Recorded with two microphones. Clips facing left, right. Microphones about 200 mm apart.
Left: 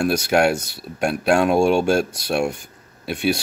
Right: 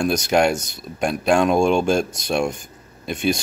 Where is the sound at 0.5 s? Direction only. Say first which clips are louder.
Left 1 dB; 60° left (ahead or behind).